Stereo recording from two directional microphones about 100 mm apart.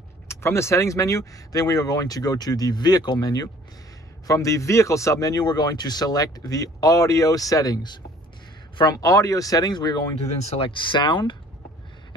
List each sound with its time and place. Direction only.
0.3 s a man's voice: 25° left (ahead or behind); by 10.0 s 50° left (ahead or behind)
10.1 s speech: 80° left; by 11.3 s 55° left (ahead or behind)